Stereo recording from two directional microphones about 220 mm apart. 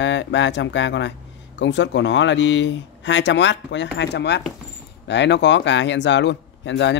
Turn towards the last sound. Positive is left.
turn(degrees=55)  # may be behind; listen again after turning